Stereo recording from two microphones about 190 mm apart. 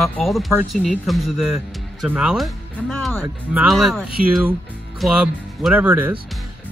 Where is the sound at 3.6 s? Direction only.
Centre (ahead or behind).